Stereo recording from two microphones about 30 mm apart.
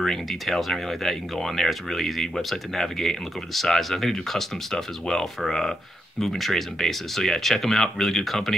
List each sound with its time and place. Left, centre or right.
0.0 s speech: centre
6.2 s speech: centre